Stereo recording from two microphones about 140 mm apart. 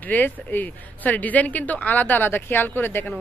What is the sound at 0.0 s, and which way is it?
Speech, 10° left (ahead or behind).